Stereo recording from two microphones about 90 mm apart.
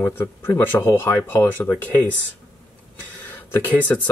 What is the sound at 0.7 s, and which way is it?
Speech, 25° left (ahead or behind).